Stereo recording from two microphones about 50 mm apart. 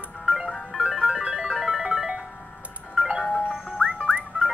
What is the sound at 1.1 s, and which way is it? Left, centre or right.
Music, centre.